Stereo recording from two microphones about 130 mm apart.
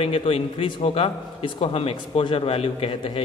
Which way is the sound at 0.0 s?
45° left (ahead or behind).